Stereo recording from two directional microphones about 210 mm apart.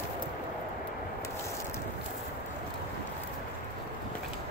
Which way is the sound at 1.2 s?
15° left (ahead or behind).